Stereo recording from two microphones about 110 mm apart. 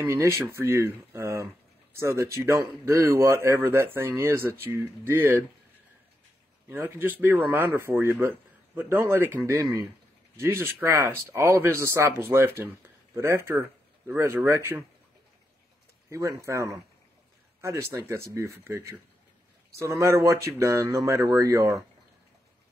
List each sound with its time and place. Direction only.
0.0 s speech: 25° right (ahead or behind)
6.7 s speech: 20° right (ahead or behind)
16.1 s speech: 25° right (ahead or behind)